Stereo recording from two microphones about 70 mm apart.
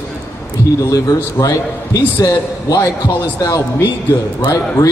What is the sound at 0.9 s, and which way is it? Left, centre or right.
A man's voice, left.